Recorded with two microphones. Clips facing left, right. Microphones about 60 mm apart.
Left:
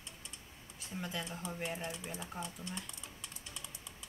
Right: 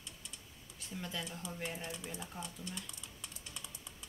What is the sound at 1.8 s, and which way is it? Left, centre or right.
Speech, left.